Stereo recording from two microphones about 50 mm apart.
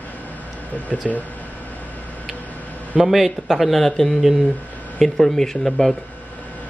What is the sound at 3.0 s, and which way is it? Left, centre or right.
Speech, centre.